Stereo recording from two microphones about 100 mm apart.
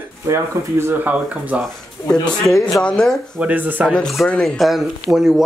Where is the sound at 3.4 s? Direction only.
15° right (ahead or behind).